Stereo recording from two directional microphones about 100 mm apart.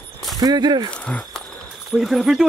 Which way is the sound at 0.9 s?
10° left (ahead or behind).